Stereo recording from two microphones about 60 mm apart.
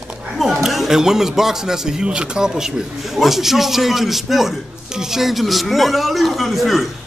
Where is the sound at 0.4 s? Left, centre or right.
Centre.